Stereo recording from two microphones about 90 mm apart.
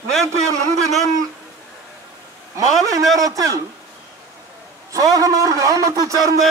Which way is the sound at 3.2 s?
40° right (ahead or behind).